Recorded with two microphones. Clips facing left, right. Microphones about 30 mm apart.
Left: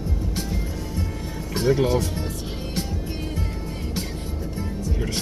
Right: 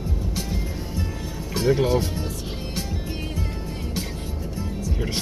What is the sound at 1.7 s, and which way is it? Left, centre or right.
Speech, centre.